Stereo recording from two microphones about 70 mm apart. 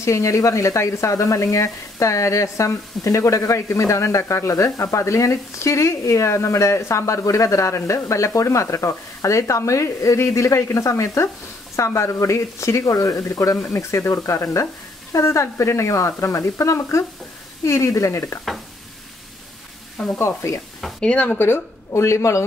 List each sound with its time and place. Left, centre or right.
0.0 s speech: left
20.2 s speech: left
21.0 s speech: centre
21.4 s speech: left